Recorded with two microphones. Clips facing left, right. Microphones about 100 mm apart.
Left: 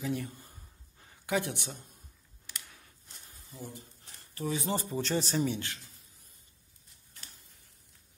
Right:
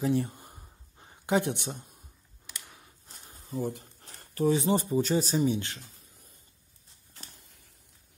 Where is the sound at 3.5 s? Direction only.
55° right (ahead or behind).